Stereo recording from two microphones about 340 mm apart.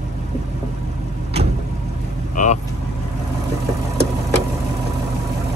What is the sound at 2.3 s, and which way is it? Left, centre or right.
Speech, left.